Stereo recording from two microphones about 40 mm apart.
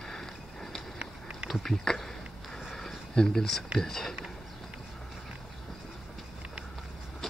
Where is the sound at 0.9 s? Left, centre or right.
Right.